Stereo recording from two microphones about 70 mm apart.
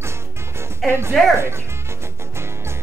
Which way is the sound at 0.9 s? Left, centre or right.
Right.